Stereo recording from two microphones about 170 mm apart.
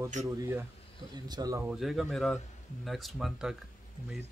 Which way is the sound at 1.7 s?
Centre (ahead or behind).